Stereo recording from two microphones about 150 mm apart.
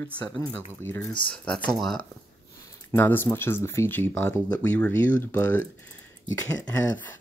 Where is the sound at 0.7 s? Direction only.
15° left (ahead or behind).